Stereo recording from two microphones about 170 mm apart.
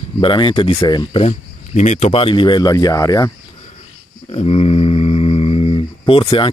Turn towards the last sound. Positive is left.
turn(degrees=30)  # may be behind; listen again after turning